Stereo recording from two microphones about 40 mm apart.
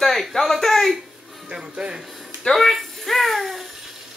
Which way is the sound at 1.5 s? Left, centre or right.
Right.